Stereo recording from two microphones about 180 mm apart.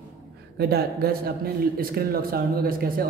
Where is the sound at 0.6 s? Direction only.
60° right (ahead or behind).